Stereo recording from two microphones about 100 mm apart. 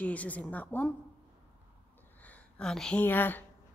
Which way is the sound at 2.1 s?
15° left (ahead or behind).